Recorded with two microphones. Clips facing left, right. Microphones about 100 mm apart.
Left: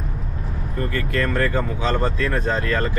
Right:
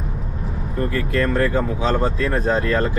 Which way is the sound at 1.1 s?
25° right (ahead or behind).